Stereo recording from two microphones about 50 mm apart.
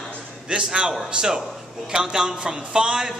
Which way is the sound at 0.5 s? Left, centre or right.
Centre.